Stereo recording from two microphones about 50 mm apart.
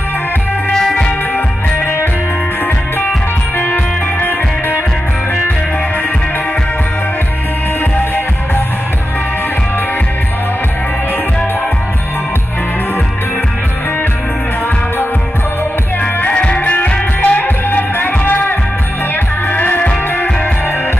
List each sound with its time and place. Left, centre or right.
0.7 s music: centre
3.5 s music: left
16.3 s music: left
17.6 s music: left